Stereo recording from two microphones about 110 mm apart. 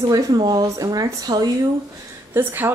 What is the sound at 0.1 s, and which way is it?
A woman's voice, 40° right (ahead or behind).